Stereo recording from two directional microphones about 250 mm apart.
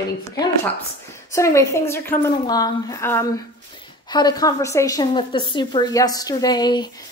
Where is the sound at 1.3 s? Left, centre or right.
Centre.